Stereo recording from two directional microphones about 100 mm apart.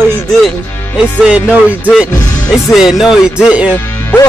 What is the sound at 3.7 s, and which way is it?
Music, 20° left (ahead or behind).